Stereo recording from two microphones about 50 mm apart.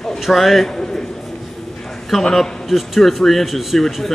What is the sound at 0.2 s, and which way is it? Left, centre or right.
Speech, centre.